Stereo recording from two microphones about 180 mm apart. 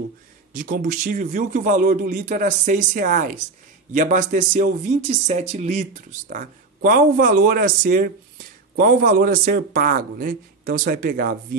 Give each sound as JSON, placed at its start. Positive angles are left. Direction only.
{"t": 0.5, "sound": "speech", "side_deg": -50}